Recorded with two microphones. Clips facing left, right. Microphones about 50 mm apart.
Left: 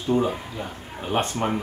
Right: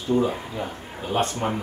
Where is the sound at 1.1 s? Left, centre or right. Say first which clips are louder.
Even; left.